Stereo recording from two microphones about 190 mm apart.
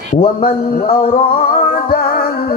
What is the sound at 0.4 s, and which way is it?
Speech, 55° left (ahead or behind).